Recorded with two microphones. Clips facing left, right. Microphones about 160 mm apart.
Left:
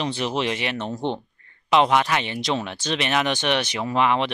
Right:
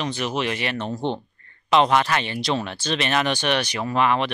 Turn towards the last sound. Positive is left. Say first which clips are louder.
# even
turn(degrees=20)  # may be behind; listen again after turning